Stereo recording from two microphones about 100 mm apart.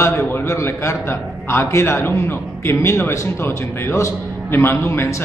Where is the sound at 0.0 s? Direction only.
25° left (ahead or behind).